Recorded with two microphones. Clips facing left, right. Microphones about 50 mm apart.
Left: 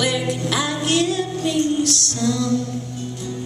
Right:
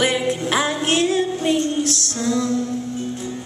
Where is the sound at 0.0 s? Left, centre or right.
Right.